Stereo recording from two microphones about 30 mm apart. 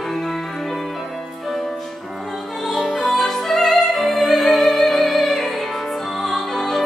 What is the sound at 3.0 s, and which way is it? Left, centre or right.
Opera, centre.